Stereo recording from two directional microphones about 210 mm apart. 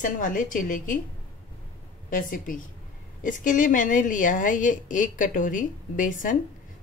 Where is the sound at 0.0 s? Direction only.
40° left (ahead or behind).